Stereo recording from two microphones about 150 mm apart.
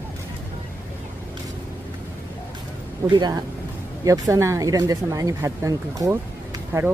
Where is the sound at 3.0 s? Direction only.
30° right (ahead or behind).